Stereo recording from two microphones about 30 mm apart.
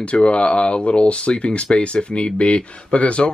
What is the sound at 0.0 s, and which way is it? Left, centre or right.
Speech, left.